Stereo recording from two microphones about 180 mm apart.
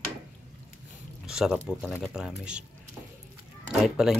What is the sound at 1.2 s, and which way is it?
Speech, 5° right (ahead or behind).